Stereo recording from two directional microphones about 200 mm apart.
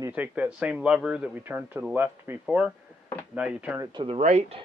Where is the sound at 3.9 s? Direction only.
25° right (ahead or behind).